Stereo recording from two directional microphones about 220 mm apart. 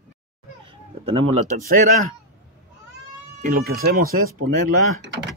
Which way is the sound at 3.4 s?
40° right (ahead or behind).